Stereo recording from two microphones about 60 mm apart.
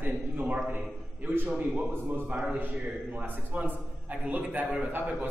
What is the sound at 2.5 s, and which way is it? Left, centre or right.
A man's voice, right.